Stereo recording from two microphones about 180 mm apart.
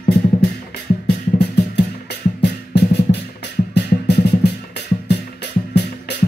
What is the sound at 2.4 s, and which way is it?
Drum, 70° left (ahead or behind).